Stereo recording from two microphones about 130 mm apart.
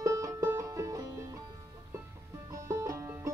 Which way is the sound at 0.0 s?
25° right (ahead or behind).